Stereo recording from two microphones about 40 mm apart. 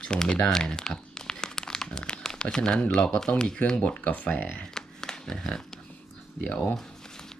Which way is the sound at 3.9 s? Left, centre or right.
Left.